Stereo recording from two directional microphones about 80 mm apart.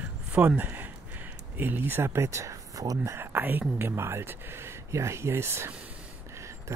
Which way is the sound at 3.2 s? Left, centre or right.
Right.